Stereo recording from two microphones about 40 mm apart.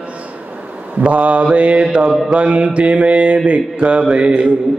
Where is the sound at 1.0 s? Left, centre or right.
Right.